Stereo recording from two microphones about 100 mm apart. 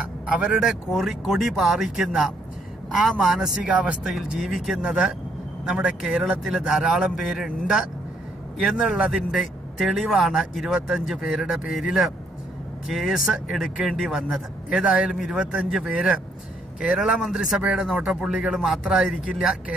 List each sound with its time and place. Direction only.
0.3 s speech: 10° right (ahead or behind)